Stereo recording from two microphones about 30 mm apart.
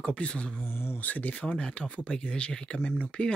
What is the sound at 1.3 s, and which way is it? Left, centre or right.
Speech, left.